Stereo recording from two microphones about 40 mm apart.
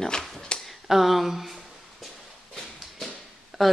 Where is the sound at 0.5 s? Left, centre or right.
Left.